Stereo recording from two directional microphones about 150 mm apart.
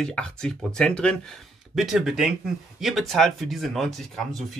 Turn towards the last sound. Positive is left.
turn(degrees=0)  # may be behind; listen again after turning